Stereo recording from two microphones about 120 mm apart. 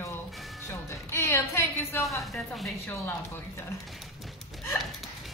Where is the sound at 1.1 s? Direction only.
20° left (ahead or behind).